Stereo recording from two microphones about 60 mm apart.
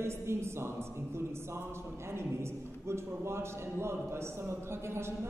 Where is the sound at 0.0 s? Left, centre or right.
Right.